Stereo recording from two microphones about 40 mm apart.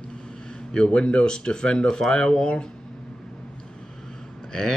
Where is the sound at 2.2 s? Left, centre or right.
Left.